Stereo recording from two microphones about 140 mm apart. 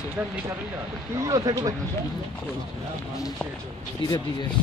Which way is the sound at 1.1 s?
25° right (ahead or behind).